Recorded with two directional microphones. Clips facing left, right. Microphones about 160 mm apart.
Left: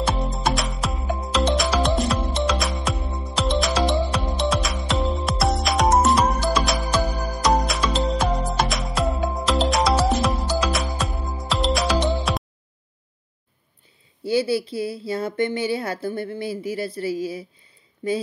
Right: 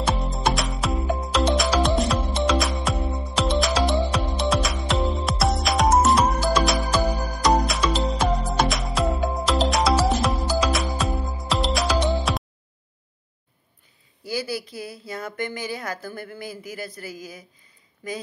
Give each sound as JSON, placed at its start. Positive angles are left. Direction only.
{"t": 0.0, "sound": "music", "side_deg": 0}
{"t": 14.2, "sound": "a woman's voice", "side_deg": 30}